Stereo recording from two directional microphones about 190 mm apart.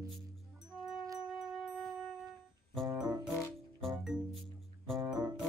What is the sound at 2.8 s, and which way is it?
Music, 20° right (ahead or behind).